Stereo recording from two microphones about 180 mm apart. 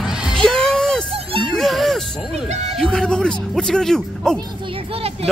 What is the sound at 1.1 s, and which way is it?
Music, 30° right (ahead or behind).